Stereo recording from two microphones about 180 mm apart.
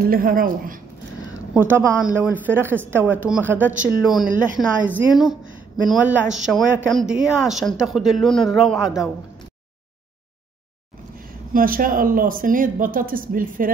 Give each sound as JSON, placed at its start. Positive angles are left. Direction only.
{"t": 0.0, "sound": "speech", "side_deg": -55}
{"t": 1.5, "sound": "a woman's voice", "side_deg": -10}
{"t": 11.5, "sound": "speech", "side_deg": -50}